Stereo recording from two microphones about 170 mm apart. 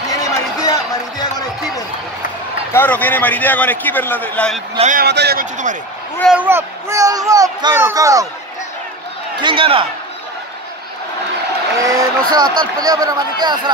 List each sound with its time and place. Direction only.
0.1 s a sound: 20° left (ahead or behind)
2.7 s a man's voice: 10° left (ahead or behind)
4.9 s speech: 75° right (ahead or behind)
5.4 s speech: 50° right (ahead or behind)
6.3 s speech: 10° right (ahead or behind)
9.4 s a man's voice: 30° right (ahead or behind)
11.8 s speech: 20° right (ahead or behind)